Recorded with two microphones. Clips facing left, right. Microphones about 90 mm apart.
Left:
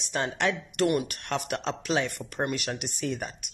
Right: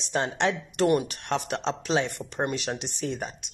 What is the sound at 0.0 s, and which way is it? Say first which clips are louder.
A woman's voice: right 2 dB; 30° right (ahead or behind).